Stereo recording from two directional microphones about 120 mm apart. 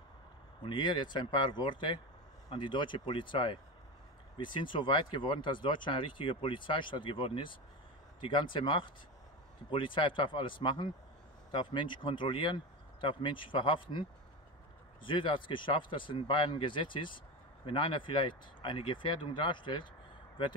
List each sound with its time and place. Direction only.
0.6 s speech: 40° left (ahead or behind)
15.0 s speech: 45° left (ahead or behind)